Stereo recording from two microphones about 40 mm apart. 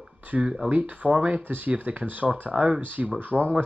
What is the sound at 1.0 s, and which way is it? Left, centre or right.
Speech, right.